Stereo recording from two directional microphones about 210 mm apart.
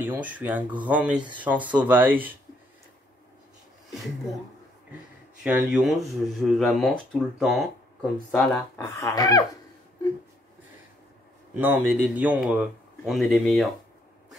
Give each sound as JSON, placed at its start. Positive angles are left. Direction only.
{"t": 0.0, "sound": "speech", "side_deg": -10}
{"t": 5.4, "sound": "speech", "side_deg": -5}
{"t": 8.7, "sound": "speech", "side_deg": 15}
{"t": 11.5, "sound": "speech", "side_deg": -10}